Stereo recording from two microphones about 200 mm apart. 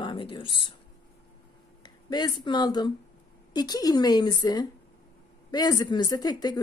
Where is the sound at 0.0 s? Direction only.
25° left (ahead or behind).